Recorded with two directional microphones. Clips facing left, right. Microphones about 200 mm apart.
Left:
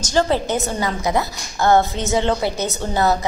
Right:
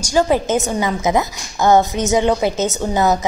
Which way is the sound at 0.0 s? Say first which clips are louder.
Right 3 dB; 10° right (ahead or behind).